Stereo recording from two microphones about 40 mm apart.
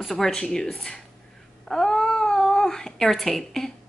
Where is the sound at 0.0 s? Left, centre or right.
Centre.